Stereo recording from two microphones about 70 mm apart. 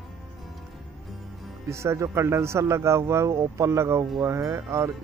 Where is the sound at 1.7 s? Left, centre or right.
Right.